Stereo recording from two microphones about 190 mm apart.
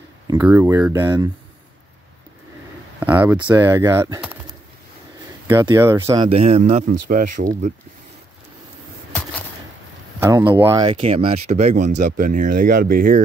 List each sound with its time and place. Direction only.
0.3 s speech: 10° right (ahead or behind)
3.0 s speech: 10° right (ahead or behind)
5.5 s speech: 15° right (ahead or behind)
6.1 s speech: 30° right (ahead or behind)
10.2 s speech: 10° right (ahead or behind)
11.0 s speech: 30° right (ahead or behind); by 13.2 s 50° right (ahead or behind)